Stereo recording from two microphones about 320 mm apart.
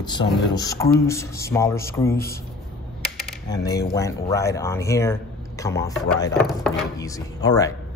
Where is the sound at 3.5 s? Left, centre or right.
Centre.